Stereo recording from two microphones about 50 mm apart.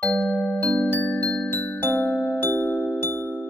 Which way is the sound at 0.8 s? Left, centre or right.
Left.